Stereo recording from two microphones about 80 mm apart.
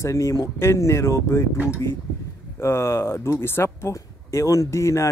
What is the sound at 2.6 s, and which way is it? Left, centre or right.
A man's voice, left.